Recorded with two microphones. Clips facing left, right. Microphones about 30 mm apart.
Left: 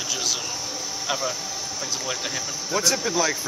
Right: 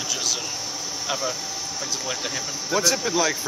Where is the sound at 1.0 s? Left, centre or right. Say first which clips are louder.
Even; centre.